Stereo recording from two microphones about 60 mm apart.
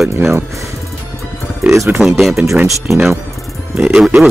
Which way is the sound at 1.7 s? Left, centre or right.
Right.